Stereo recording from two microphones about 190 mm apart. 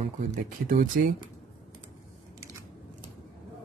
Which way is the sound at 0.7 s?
45° right (ahead or behind).